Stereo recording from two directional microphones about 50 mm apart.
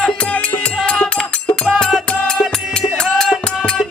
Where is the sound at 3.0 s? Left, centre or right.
Centre.